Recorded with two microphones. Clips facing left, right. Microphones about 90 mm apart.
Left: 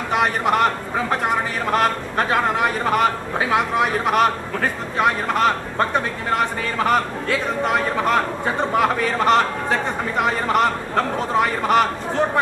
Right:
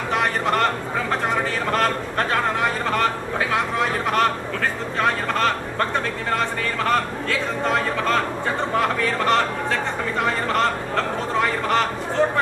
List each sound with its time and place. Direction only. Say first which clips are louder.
0.1 s a man's voice: left 3 dB; 15° left (ahead or behind)